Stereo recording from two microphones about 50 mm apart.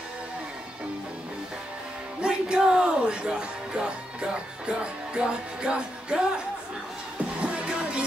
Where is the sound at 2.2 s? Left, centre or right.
Centre.